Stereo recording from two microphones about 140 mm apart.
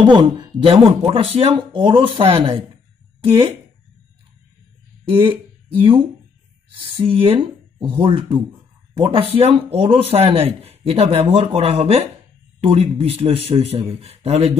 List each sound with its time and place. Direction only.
0.0 s speech: 30° right (ahead or behind)
5.1 s speech: 35° right (ahead or behind)